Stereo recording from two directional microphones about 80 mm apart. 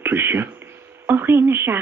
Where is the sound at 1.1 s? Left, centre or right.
Right.